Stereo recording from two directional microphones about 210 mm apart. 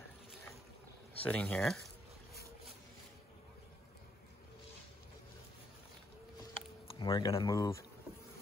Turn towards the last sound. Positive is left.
turn(degrees=15)  # may be behind; listen again after turning